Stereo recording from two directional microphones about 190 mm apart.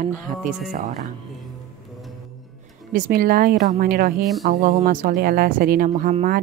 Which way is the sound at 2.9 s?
50° right (ahead or behind).